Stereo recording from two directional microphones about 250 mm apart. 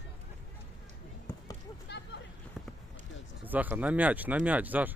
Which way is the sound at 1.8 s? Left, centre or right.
Left.